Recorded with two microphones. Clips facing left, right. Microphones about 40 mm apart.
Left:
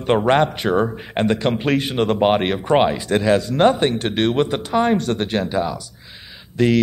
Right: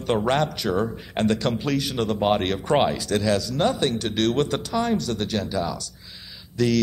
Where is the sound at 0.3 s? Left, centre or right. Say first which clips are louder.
Left 6 dB; left.